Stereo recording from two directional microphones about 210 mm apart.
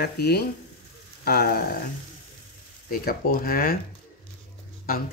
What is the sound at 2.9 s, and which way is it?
Speech, 45° left (ahead or behind).